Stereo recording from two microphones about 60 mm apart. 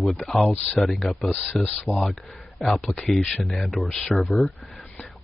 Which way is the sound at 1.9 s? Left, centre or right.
Centre.